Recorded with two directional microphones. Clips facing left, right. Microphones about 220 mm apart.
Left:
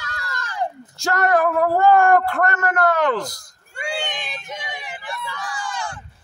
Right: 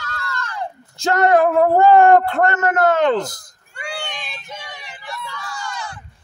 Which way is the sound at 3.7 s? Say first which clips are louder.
Left 3 dB; 25° left (ahead or behind).